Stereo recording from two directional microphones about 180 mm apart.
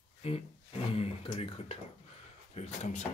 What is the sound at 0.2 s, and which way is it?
Speech, 35° left (ahead or behind).